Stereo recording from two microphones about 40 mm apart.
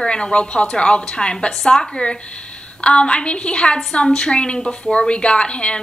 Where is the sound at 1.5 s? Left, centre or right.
Centre.